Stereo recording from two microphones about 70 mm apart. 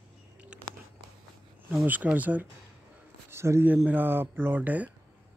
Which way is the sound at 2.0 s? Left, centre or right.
Right.